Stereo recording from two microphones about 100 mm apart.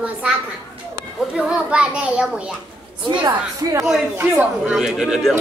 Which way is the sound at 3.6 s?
35° right (ahead or behind).